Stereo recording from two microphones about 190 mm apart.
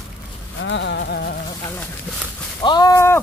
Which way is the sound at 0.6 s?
70° left (ahead or behind).